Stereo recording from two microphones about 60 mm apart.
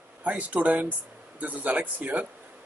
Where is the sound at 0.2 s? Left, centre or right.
Right.